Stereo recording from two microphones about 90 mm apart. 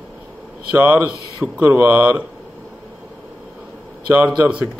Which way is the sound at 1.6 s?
30° right (ahead or behind).